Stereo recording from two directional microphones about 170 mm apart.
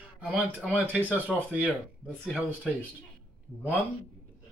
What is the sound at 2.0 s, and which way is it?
Speech, 5° left (ahead or behind).